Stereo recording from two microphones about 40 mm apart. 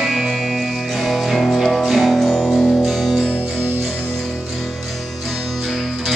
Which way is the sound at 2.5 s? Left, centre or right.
Left.